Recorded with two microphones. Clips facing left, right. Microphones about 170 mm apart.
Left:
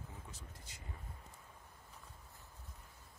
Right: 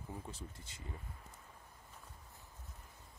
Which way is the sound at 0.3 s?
30° right (ahead or behind).